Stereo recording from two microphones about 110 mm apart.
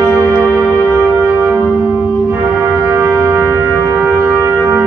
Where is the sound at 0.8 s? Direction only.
20° right (ahead or behind).